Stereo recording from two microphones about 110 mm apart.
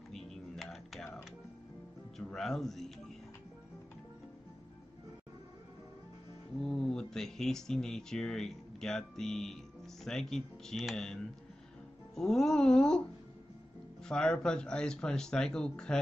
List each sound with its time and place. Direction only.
0.1 s music: 5° left (ahead or behind)
2.1 s speech: 5° left (ahead or behind)
6.6 s speech: 5° left (ahead or behind)
12.2 s speech: 5° left (ahead or behind)